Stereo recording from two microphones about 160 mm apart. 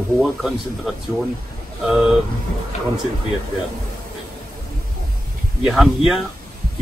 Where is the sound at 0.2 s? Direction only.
Centre (ahead or behind).